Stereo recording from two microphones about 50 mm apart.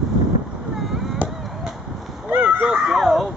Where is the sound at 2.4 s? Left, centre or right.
Right.